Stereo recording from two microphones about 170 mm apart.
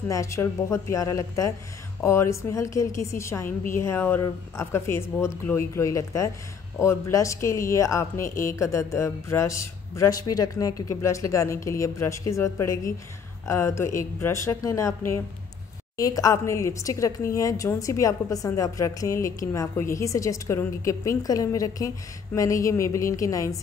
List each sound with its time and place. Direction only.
0.1 s a woman's voice: 15° left (ahead or behind)